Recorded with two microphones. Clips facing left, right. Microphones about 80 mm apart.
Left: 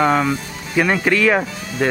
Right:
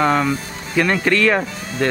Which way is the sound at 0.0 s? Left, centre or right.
Centre.